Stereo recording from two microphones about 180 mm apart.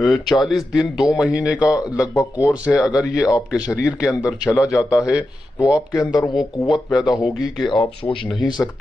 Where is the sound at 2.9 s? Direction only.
20° left (ahead or behind).